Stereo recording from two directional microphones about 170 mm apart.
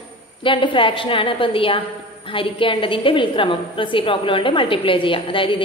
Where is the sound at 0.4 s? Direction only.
30° left (ahead or behind).